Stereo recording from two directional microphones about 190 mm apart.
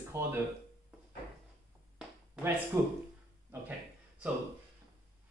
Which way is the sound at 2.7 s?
15° right (ahead or behind).